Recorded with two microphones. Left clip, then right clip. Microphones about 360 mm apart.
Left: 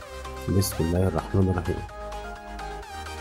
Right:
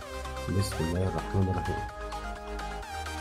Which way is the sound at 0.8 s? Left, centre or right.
Centre.